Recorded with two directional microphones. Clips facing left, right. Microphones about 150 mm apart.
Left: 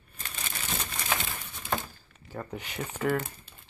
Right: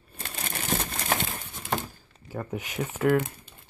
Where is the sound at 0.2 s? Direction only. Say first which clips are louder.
Right 5 dB; 45° right (ahead or behind).